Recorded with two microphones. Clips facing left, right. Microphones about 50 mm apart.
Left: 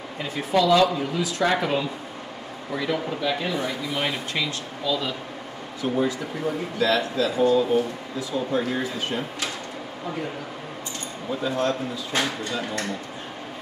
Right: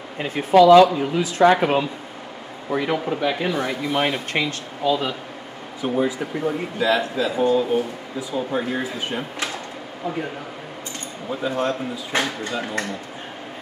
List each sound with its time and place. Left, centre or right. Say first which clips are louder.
0.2 s speech: right 8 dB; right
3.1 s speech: right 4 dB; right
3.5 s speech: right 4 dB; right
5.8 s speech: right 2 dB; centre
11.2 s speech: right 1 dB; centre
12.1 s speech: right 2 dB; right